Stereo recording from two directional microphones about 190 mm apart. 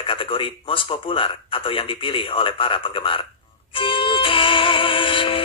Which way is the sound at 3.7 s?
25° left (ahead or behind).